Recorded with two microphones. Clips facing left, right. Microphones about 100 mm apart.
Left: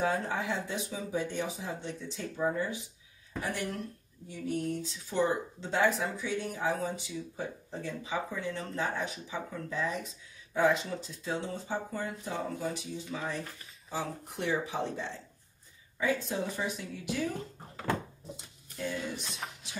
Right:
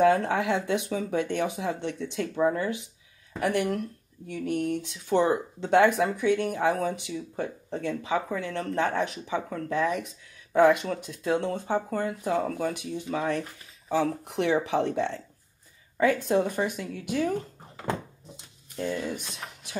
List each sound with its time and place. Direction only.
0.0 s speech: 70° right (ahead or behind)
13.8 s speech: 75° right (ahead or behind)
16.0 s speech: 60° right (ahead or behind)
19.2 s speech: centre (ahead or behind)